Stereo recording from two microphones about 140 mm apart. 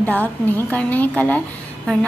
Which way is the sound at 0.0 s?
10° left (ahead or behind).